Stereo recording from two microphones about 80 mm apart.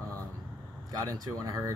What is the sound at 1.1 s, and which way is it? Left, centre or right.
Speech, right.